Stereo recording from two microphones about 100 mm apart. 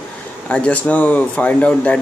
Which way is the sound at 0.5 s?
10° left (ahead or behind).